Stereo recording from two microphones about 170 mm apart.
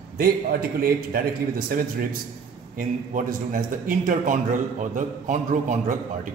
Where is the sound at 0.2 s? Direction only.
60° right (ahead or behind).